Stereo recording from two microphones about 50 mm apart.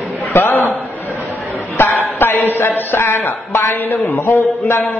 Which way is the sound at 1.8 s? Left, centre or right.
Left.